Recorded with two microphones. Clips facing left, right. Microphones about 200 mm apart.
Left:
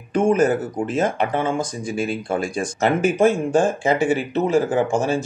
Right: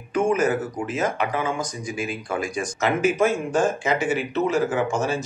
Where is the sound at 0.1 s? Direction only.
30° left (ahead or behind).